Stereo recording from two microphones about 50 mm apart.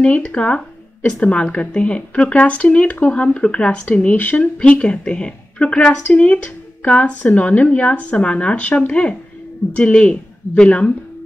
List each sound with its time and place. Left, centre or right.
0.0 s speech: left